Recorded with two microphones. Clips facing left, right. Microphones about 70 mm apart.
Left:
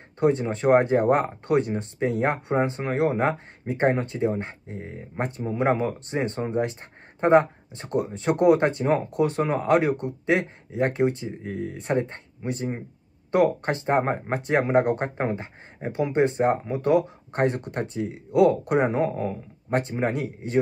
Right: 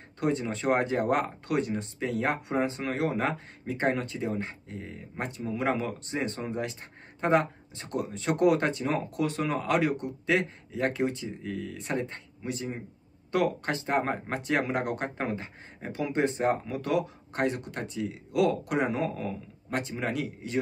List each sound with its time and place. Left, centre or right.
0.2 s speech: left